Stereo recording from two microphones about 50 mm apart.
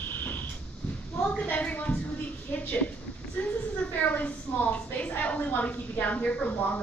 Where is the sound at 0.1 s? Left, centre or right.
Left.